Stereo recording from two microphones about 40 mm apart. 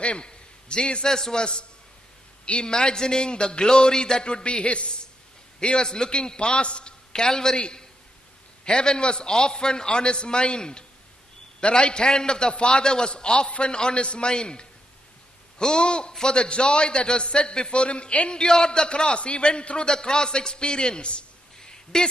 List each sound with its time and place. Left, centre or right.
0.0 s a man's voice: left
1.1 s a man's voice: centre
1.4 s a man's voice: left
21.5 s a sound: centre